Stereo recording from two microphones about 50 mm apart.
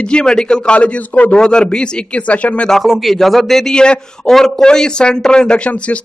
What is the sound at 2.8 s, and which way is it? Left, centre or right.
A man's voice, centre.